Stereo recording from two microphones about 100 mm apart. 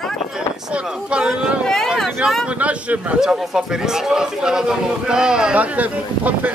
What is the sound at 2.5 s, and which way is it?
A man's voice, 10° right (ahead or behind).